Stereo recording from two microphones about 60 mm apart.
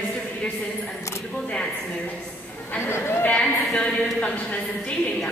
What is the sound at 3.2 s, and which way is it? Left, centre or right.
Speech, centre.